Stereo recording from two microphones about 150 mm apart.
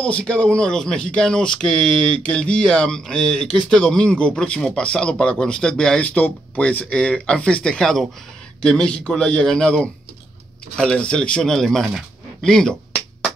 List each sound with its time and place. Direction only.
0.0 s speech: 5° left (ahead or behind)